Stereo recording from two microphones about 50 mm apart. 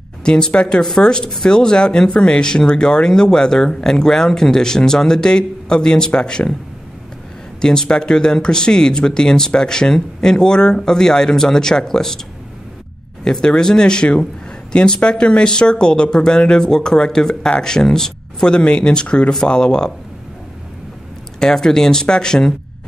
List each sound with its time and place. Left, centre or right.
0.2 s speech: centre
7.6 s speech: centre
13.2 s speech: centre
21.4 s speech: centre